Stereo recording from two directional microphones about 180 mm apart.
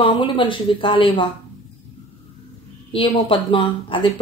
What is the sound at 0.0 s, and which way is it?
Speech, 25° left (ahead or behind).